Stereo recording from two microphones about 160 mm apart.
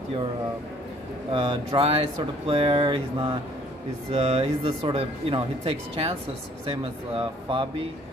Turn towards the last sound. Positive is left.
turn(degrees=-35)  # may be behind; listen again after turning